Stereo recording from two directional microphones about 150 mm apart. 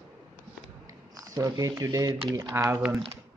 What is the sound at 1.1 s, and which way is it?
Speech, 20° right (ahead or behind).